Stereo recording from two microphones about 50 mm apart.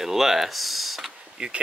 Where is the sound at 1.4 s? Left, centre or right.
Centre.